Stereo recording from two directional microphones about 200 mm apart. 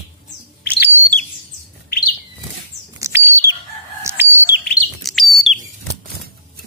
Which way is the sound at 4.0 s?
10° right (ahead or behind).